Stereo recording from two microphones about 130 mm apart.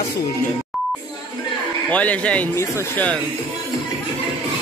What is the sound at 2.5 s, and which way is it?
Speech, 20° left (ahead or behind).